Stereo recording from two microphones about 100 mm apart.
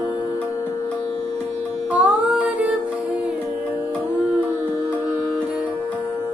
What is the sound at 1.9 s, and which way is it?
Music, 15° right (ahead or behind).